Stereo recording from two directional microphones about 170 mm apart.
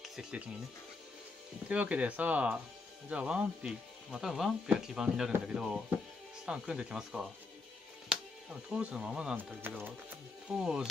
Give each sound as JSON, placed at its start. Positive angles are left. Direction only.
{"t": 0.0, "sound": "music", "side_deg": -5}
{"t": 1.7, "sound": "speech", "side_deg": -10}